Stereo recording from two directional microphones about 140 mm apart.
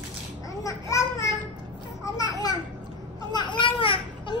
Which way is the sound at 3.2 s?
35° left (ahead or behind).